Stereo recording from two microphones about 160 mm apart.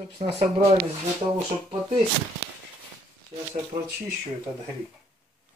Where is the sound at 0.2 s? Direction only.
45° right (ahead or behind).